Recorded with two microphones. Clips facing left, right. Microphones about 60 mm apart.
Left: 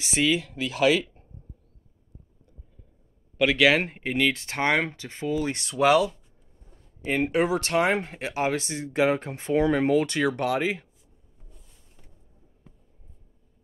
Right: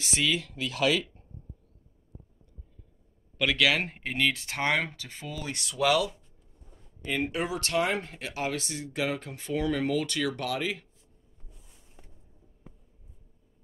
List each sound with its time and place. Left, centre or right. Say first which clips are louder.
0.1 s speech: left 5 dB; centre
3.3 s speech: left 5 dB; centre
4.3 s speech: left 4 dB; left
4.6 s speech: left 4 dB; centre
7.3 s speech: left 7 dB; left
11.4 s a sound: left 1 dB; centre